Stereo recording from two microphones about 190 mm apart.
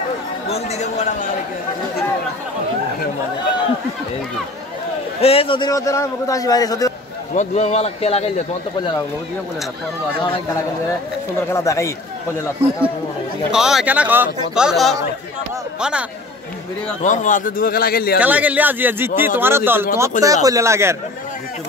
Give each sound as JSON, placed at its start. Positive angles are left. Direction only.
{"t": 0.5, "sound": "speech", "side_deg": 35}
{"t": 5.2, "sound": "a man's voice", "side_deg": 30}
{"t": 7.3, "sound": "speech", "side_deg": 35}
{"t": 11.5, "sound": "speech", "side_deg": 15}
{"t": 13.5, "sound": "a man's voice", "side_deg": -5}
{"t": 17.0, "sound": "a man's voice", "side_deg": 40}
{"t": 18.2, "sound": "a man's voice", "side_deg": -10}